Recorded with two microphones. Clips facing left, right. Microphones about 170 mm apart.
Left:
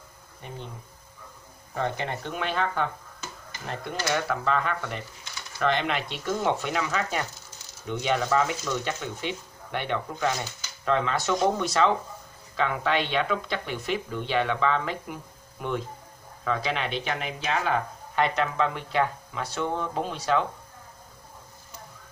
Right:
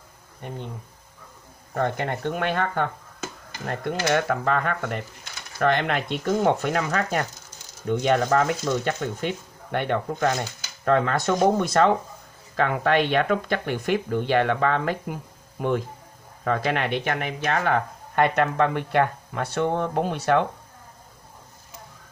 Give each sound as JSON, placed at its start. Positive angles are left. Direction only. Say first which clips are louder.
{"t": 0.4, "sound": "speech", "louder": "right 5 dB", "side_deg": -50}
{"t": 1.7, "sound": "speech", "louder": "right 4 dB", "side_deg": -55}
{"t": 16.4, "sound": "speech", "louder": "right 4 dB", "side_deg": -55}